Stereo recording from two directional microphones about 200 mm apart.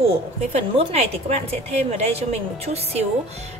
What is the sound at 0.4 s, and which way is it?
A woman's voice, 30° right (ahead or behind).